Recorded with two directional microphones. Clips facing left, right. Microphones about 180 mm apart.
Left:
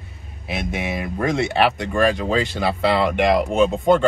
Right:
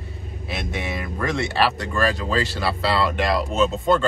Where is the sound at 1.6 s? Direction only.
20° left (ahead or behind).